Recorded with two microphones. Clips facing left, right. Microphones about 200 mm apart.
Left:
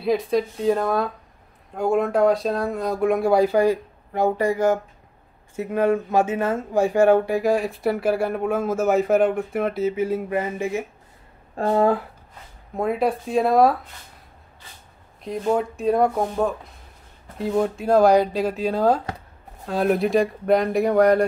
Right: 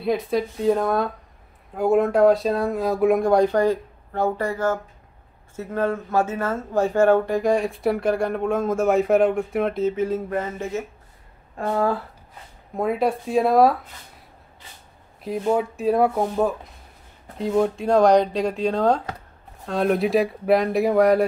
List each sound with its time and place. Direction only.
0.0 s speech: centre (ahead or behind)
11.5 s speech: 25° left (ahead or behind)
12.7 s speech: centre (ahead or behind)
15.2 s speech: 5° right (ahead or behind)